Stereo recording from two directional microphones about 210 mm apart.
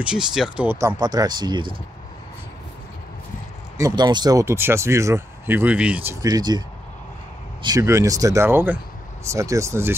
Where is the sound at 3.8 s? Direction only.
15° right (ahead or behind).